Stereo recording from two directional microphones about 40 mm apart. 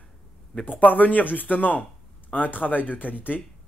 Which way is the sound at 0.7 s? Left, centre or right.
Left.